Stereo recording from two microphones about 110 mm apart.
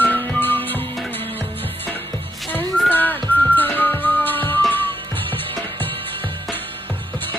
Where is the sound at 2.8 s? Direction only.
15° left (ahead or behind).